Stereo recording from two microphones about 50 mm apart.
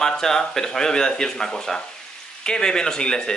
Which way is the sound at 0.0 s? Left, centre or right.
Centre.